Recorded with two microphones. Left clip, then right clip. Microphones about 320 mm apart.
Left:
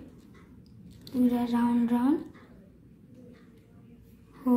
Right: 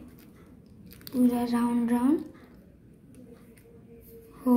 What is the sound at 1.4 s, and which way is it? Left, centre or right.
Speech, centre.